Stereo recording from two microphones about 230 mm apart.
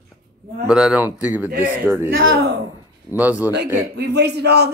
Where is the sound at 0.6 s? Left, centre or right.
Centre.